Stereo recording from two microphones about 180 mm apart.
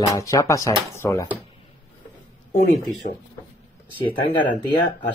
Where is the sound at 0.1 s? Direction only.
15° left (ahead or behind).